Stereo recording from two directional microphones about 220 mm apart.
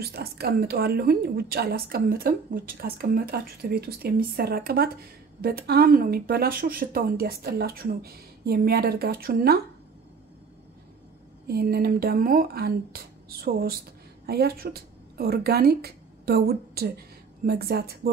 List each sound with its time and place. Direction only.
0.0 s a woman's voice: 45° right (ahead or behind)
11.4 s a woman's voice: 45° right (ahead or behind)